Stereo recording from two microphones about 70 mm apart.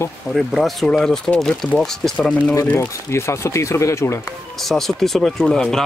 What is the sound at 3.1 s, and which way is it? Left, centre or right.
Speech, left.